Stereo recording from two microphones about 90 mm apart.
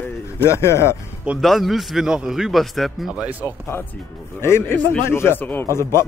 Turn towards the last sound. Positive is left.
turn(degrees=30)  # may be behind; listen again after turning